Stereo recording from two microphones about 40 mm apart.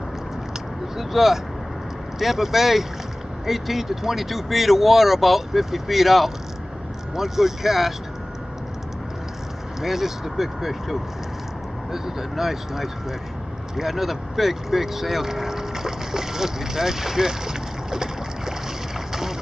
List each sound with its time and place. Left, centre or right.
0.9 s vehicle: centre
2.1 s speech: centre
9.8 s speech: centre